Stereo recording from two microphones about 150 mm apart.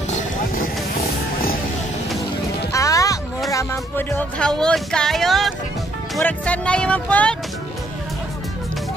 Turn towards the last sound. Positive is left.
turn(degrees=10)  # may be behind; listen again after turning